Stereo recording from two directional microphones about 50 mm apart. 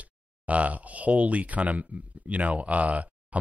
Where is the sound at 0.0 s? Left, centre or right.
Right.